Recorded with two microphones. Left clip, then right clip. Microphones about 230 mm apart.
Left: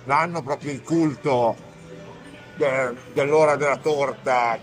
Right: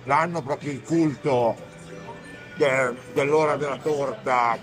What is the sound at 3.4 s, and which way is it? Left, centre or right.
Speech, centre.